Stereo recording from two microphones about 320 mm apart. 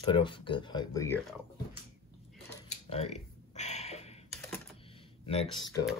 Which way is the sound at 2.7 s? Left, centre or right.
Centre.